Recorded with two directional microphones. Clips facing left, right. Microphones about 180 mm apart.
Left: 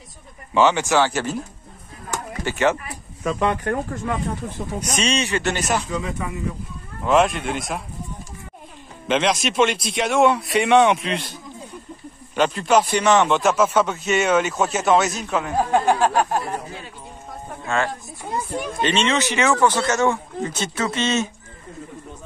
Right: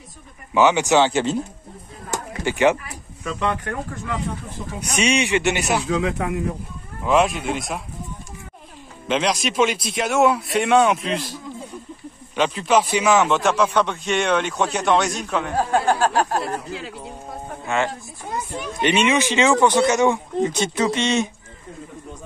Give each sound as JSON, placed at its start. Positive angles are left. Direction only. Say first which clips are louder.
{"t": 0.6, "sound": "speech", "louder": "right 1 dB", "side_deg": -15}
{"t": 2.4, "sound": "a man's voice", "louder": "right 2 dB", "side_deg": -15}
{"t": 3.3, "sound": "speech", "louder": "left 3 dB", "side_deg": 45}
{"t": 4.9, "sound": "a man's voice", "louder": "right 4 dB", "side_deg": -10}
{"t": 5.9, "sound": "speech", "louder": "right 5 dB", "side_deg": -90}
{"t": 7.0, "sound": "a man's voice", "louder": "left 1 dB", "side_deg": 0}
{"t": 9.0, "sound": "a man's voice", "louder": "left 1 dB", "side_deg": 0}
{"t": 12.4, "sound": "a man's voice", "louder": "left 1 dB", "side_deg": 0}
{"t": 15.5, "sound": "speech", "louder": "left 1 dB", "side_deg": 15}
{"t": 17.6, "sound": "a man's voice", "louder": "even", "side_deg": -20}